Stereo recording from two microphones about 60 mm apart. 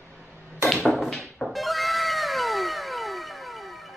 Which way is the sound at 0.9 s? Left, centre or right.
Centre.